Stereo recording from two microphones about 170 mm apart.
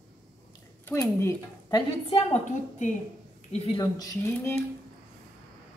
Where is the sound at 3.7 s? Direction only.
15° left (ahead or behind).